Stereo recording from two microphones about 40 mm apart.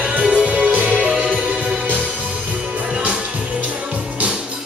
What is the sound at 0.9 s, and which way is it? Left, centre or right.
Music, centre.